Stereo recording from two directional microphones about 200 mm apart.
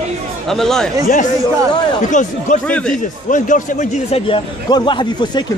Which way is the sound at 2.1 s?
40° left (ahead or behind).